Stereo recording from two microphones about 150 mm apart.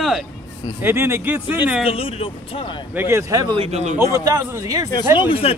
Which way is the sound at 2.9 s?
15° right (ahead or behind).